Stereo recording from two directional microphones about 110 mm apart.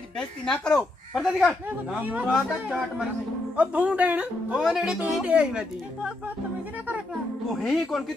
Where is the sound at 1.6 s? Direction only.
15° right (ahead or behind).